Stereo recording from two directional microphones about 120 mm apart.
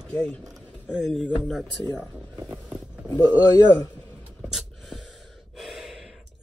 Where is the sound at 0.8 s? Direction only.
5° right (ahead or behind).